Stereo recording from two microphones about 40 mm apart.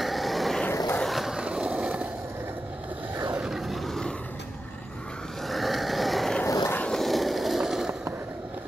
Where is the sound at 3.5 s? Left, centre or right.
Centre.